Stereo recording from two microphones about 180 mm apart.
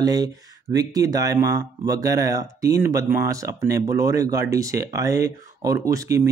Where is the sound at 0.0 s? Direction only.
20° right (ahead or behind).